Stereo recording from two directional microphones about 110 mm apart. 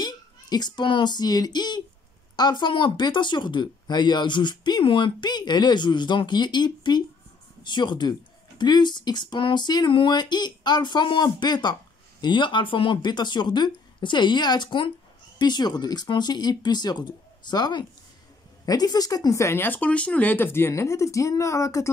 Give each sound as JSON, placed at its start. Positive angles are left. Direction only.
{"t": 0.0, "sound": "speech", "side_deg": 40}